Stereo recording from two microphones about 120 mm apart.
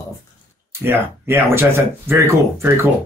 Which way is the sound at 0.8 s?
20° right (ahead or behind).